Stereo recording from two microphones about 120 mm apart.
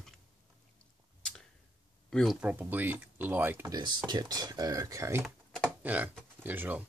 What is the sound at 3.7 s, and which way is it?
Speech, 35° right (ahead or behind).